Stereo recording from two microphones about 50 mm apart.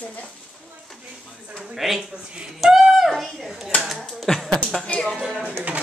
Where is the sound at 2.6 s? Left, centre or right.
Centre.